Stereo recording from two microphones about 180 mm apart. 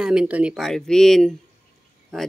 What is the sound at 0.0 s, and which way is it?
Speech, 5° right (ahead or behind).